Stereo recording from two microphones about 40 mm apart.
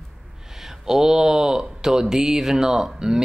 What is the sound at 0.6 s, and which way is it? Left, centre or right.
Speech, centre.